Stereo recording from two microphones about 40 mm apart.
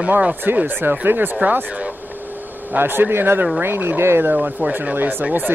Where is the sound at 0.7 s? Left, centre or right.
Right.